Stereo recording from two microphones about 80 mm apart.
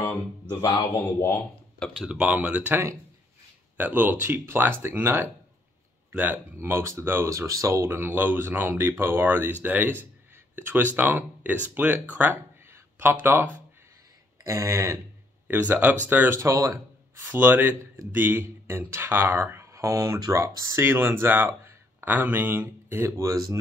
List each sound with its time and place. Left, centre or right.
0.7 s speech: left
2.0 s speech: centre
2.7 s speech: right
6.5 s speech: right
7.2 s speech: right
14.4 s speech: right
16.1 s speech: right
16.3 s speech: right
17.2 s speech: right
20.7 s speech: right